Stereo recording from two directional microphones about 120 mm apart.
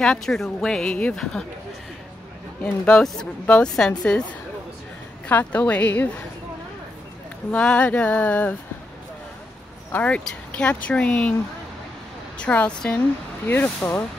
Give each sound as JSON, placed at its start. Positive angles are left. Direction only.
{"t": 0.0, "sound": "speech", "side_deg": 5}
{"t": 2.6, "sound": "a woman's voice", "side_deg": 10}
{"t": 5.3, "sound": "a woman's voice", "side_deg": 15}
{"t": 7.5, "sound": "a woman's voice", "side_deg": 10}
{"t": 9.9, "sound": "a woman's voice", "side_deg": 10}
{"t": 12.4, "sound": "a woman's voice", "side_deg": 10}